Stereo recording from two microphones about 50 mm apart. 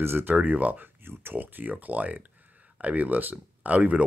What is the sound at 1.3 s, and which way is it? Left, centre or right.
Speech, right.